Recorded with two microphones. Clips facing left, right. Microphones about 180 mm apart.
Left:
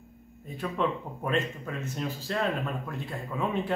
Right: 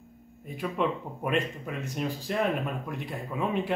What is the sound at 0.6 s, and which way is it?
Speech, 10° right (ahead or behind).